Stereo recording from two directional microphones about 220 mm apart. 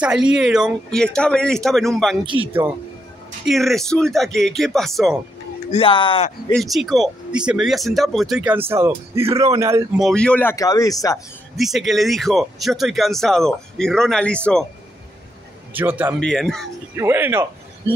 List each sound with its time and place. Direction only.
0.0 s speech: 5° right (ahead or behind)
5.7 s speech: 25° left (ahead or behind)
6.5 s speech: centre (ahead or behind)
9.9 s speech: centre (ahead or behind)
11.5 s speech: centre (ahead or behind)
15.7 s speech: 10° right (ahead or behind)
16.2 s speech: 5° left (ahead or behind)
16.9 s speech: 10° right (ahead or behind)